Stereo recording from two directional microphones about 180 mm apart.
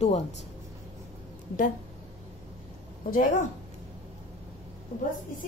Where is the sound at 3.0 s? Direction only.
50° left (ahead or behind).